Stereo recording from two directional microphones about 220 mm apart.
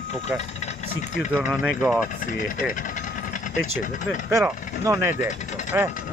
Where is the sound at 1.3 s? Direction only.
5° right (ahead or behind).